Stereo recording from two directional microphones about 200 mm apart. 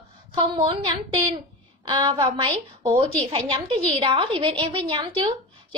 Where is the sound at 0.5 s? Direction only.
25° right (ahead or behind).